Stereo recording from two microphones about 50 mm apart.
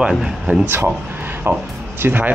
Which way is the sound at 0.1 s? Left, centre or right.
Centre.